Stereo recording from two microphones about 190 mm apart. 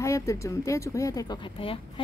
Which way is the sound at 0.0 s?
15° left (ahead or behind).